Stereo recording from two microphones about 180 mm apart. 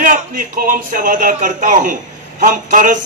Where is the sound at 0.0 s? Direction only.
50° right (ahead or behind).